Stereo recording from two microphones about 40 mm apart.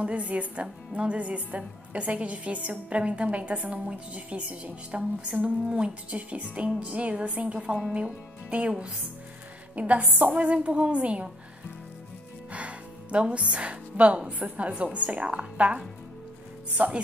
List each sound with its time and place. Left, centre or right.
0.0 s a woman's voice: right
12.5 s a woman's voice: right